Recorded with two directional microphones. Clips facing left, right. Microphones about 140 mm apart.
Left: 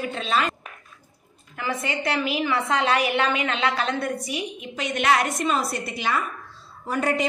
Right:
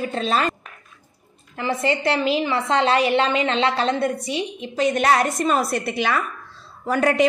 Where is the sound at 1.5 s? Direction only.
30° right (ahead or behind).